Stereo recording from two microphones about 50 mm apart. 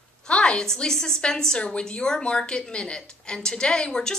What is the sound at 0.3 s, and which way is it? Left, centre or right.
A woman's voice, centre.